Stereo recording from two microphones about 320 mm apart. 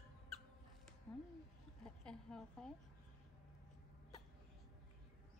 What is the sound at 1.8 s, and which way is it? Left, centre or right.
Speech, centre.